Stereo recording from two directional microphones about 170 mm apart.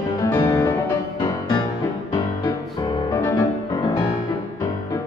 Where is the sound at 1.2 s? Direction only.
25° left (ahead or behind).